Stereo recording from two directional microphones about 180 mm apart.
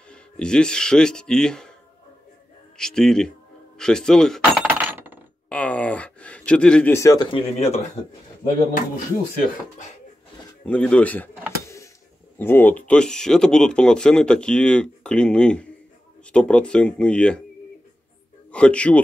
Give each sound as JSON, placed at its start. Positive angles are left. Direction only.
{"t": 0.1, "sound": "speech", "side_deg": 5}
{"t": 2.8, "sound": "speech", "side_deg": 5}
{"t": 4.7, "sound": "coin", "side_deg": -10}
{"t": 5.5, "sound": "a sound", "side_deg": 5}
{"t": 7.3, "sound": "speech", "side_deg": 35}
{"t": 10.6, "sound": "speech", "side_deg": 5}
{"t": 11.6, "sound": "a sound", "side_deg": 15}
{"t": 12.4, "sound": "speech", "side_deg": 10}
{"t": 18.5, "sound": "speech", "side_deg": 5}